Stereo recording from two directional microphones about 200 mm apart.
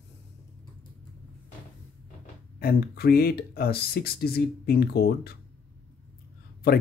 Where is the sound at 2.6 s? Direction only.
50° left (ahead or behind).